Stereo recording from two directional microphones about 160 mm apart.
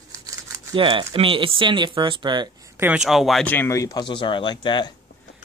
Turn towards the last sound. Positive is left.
turn(degrees=30)  # may be behind; listen again after turning